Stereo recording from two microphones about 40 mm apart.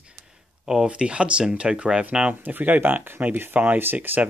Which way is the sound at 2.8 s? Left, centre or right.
Right.